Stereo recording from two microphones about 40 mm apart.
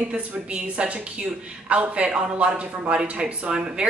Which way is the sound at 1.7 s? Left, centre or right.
Right.